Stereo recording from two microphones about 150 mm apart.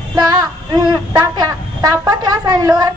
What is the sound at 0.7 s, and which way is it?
A woman's voice, 25° right (ahead or behind).